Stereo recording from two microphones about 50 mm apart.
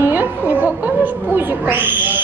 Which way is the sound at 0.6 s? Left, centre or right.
Right.